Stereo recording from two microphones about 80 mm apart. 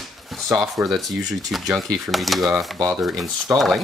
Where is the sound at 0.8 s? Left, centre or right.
Centre.